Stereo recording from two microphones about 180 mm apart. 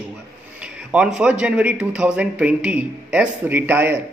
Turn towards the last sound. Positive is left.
turn(degrees=-10)  # may be behind; listen again after turning